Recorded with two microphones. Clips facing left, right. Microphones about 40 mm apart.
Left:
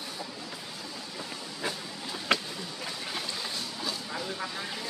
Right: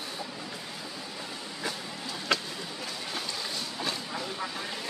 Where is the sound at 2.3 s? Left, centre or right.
Left.